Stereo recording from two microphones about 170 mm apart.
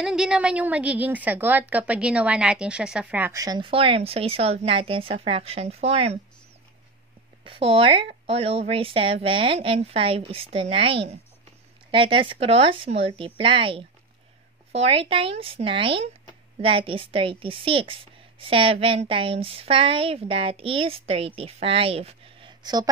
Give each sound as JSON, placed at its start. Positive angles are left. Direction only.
{"t": 0.0, "sound": "a woman's voice", "side_deg": -5}
{"t": 7.4, "sound": "a woman's voice", "side_deg": -35}